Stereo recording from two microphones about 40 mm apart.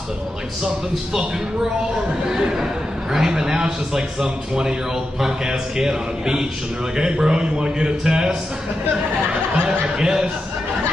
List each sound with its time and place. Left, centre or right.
2.2 s a man's voice: centre
9.7 s speech: centre